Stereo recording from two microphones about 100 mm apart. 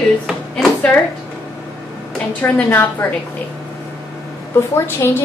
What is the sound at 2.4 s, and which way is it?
Speech, 20° left (ahead or behind).